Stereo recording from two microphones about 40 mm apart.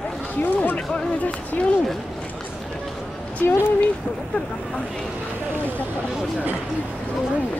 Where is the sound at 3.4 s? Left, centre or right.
Left.